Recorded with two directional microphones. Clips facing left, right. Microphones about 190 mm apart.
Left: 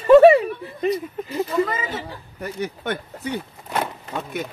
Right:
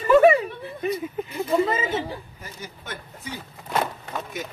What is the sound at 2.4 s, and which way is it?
Speech, 65° left (ahead or behind).